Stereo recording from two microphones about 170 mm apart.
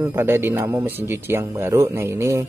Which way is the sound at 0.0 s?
15° right (ahead or behind).